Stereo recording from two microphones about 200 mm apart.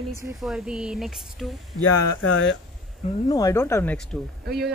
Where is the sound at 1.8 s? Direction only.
90° left.